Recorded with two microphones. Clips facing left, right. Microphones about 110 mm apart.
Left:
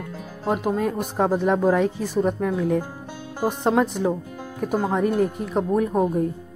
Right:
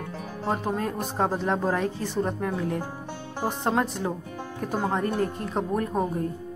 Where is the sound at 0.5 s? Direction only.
10° left (ahead or behind).